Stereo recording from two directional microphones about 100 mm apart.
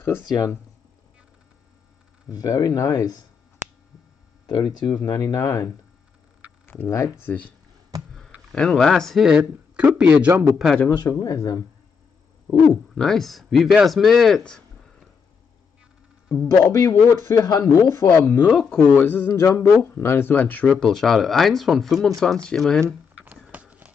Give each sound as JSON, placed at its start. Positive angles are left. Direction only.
{"t": 0.2, "sound": "speech", "side_deg": 45}
{"t": 2.3, "sound": "speech", "side_deg": 35}
{"t": 4.6, "sound": "speech", "side_deg": 45}
{"t": 6.6, "sound": "speech", "side_deg": 25}
{"t": 8.5, "sound": "speech", "side_deg": 5}
{"t": 10.3, "sound": "a man's voice", "side_deg": -25}
{"t": 10.9, "sound": "speech", "side_deg": 40}
{"t": 12.9, "sound": "speech", "side_deg": 5}
{"t": 16.6, "sound": "speech", "side_deg": 30}
{"t": 18.5, "sound": "speech", "side_deg": 5}
{"t": 18.8, "sound": "speech", "side_deg": 20}
{"t": 23.1, "sound": "a sound", "side_deg": -15}
{"t": 23.5, "sound": "clip-clop", "side_deg": -15}